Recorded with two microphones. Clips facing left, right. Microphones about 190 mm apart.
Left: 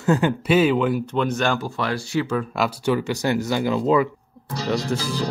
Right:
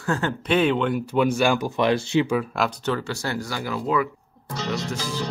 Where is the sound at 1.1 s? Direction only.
10° right (ahead or behind).